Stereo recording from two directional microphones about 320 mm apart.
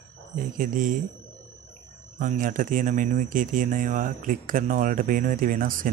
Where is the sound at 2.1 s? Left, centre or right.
Right.